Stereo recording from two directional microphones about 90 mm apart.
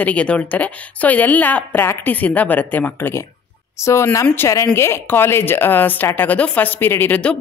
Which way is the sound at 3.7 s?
30° left (ahead or behind).